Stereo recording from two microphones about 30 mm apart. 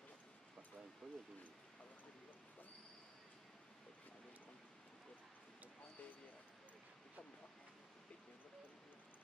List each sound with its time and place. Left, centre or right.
1.0 s speech: centre